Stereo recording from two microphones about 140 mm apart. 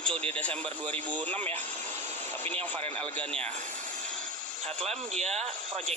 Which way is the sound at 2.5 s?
45° right (ahead or behind).